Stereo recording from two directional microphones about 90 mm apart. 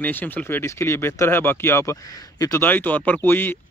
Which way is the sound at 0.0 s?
20° left (ahead or behind).